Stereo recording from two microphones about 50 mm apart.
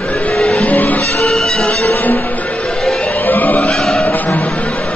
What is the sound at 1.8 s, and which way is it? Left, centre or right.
Music, left.